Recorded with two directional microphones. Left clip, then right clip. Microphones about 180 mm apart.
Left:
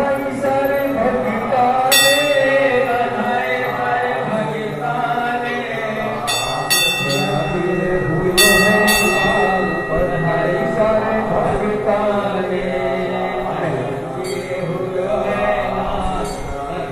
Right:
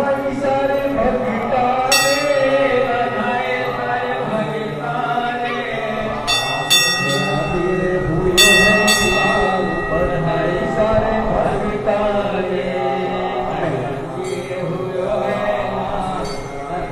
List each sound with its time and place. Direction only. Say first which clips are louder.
8.4 s train: right 1 dB; 5° right (ahead or behind)
9.2 s music: even; 10° right (ahead or behind)
9.9 s a sound: left 1 dB; 5° right (ahead or behind)